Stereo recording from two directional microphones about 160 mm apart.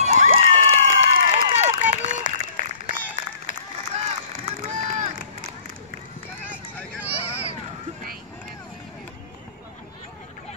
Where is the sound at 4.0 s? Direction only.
45° right (ahead or behind).